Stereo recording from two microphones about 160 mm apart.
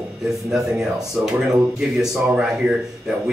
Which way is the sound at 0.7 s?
5° right (ahead or behind).